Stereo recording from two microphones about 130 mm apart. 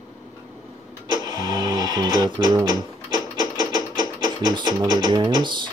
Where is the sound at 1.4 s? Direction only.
35° right (ahead or behind).